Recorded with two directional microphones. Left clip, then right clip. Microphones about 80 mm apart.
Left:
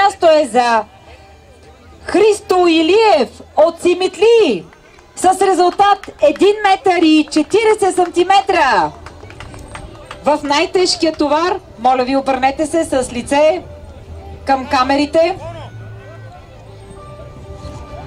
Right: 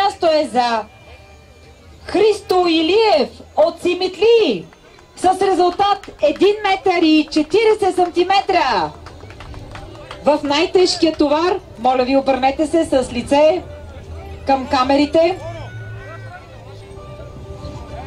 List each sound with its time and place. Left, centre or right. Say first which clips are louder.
0.0 s a sound: left 5 dB; left
2.0 s speech: left 3 dB; left
17.6 s music: left 1 dB; left